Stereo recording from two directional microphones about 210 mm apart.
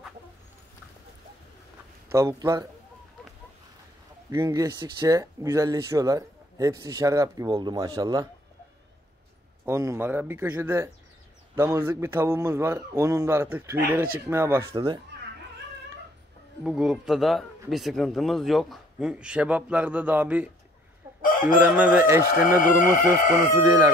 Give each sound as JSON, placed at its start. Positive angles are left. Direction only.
{"t": 2.1, "sound": "speech", "side_deg": -15}
{"t": 4.3, "sound": "speech", "side_deg": -15}
{"t": 9.7, "sound": "speech", "side_deg": -10}
{"t": 16.6, "sound": "speech", "side_deg": -5}
{"t": 21.2, "sound": "chicken", "side_deg": 40}
{"t": 21.5, "sound": "speech", "side_deg": -5}